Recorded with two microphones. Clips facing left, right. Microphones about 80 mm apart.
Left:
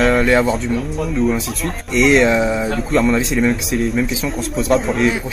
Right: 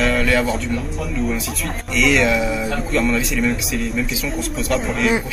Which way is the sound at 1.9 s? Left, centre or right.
Left.